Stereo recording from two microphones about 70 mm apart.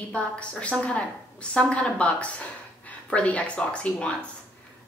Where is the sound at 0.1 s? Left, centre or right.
Centre.